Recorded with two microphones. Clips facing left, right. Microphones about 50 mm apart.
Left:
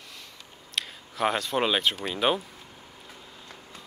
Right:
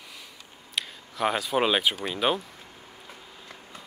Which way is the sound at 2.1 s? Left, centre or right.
Centre.